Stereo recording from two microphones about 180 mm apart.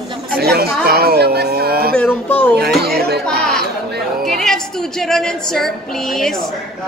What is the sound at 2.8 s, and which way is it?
Chatter, 60° right (ahead or behind).